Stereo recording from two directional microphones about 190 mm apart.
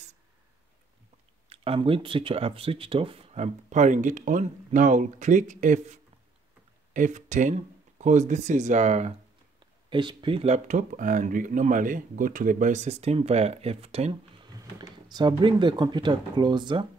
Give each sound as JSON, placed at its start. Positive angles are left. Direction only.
{"t": 1.5, "sound": "speech", "side_deg": -30}
{"t": 9.6, "sound": "speech", "side_deg": -25}
{"t": 14.5, "sound": "speech", "side_deg": -20}